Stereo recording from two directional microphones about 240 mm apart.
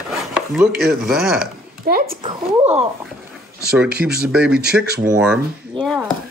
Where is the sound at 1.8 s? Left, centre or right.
Right.